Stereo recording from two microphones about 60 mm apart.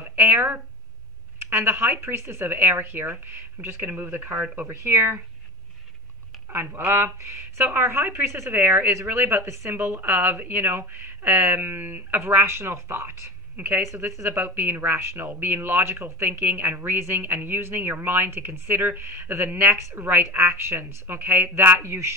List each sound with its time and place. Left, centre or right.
0.0 s speech: right
6.5 s speech: right
14.3 s speech: right